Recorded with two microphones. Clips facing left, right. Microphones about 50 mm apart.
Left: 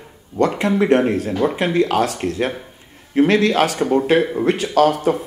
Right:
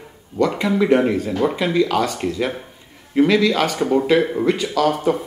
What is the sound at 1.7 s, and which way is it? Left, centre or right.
Speech, left.